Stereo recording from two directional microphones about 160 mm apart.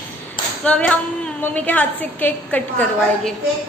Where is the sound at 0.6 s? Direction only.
5° left (ahead or behind).